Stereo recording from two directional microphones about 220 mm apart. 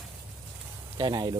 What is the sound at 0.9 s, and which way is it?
Speech, 20° right (ahead or behind).